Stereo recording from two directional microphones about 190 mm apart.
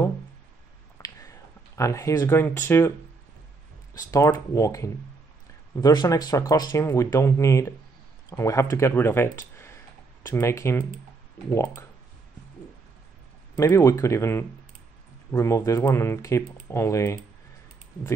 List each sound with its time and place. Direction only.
1.0 s a sound: 15° left (ahead or behind)
3.9 s speech: 20° left (ahead or behind)
13.6 s speech: 15° left (ahead or behind)